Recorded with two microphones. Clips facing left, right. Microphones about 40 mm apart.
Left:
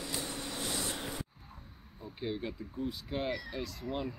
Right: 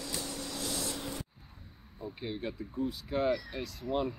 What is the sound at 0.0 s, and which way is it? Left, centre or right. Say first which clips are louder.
Vehicle: even; left.